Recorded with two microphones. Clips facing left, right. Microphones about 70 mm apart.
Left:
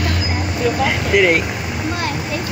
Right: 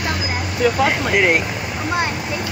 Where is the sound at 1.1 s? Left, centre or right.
Centre.